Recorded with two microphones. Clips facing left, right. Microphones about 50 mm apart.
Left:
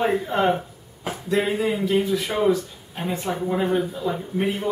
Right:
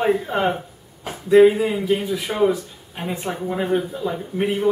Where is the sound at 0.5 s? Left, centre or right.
Centre.